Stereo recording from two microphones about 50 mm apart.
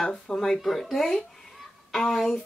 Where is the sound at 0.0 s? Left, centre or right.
Centre.